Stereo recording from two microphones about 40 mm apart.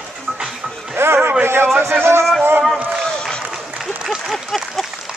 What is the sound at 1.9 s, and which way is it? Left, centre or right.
Music, right.